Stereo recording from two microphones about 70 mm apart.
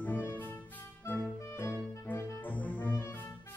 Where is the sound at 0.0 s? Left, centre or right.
Left.